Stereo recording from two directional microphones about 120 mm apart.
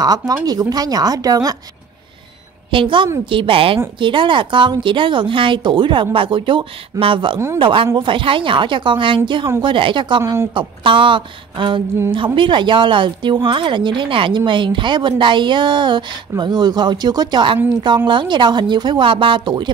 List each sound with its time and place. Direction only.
0.0 s speech: 30° right (ahead or behind)
2.7 s speech: 45° right (ahead or behind)
10.2 s speech: 25° right (ahead or behind)
10.5 s speech: 45° right (ahead or behind)